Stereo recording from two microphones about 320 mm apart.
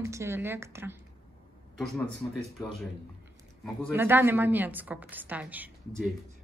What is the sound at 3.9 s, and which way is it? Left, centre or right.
A woman's voice, centre.